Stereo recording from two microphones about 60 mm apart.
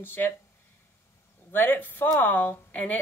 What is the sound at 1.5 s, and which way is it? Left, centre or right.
Speech, left.